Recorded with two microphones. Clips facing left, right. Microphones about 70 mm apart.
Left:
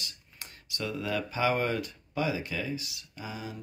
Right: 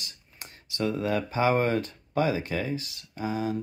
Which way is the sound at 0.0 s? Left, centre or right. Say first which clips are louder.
Even; right.